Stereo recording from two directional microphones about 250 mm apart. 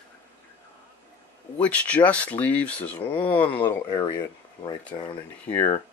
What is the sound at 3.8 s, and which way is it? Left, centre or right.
Speech, centre.